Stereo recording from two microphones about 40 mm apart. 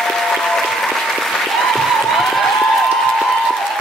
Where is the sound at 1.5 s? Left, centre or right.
Centre.